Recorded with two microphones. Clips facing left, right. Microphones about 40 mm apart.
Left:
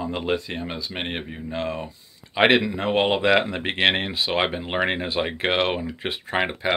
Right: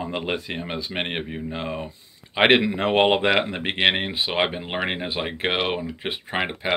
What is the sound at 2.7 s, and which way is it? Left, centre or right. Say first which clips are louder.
Speech: right 2 dB; right.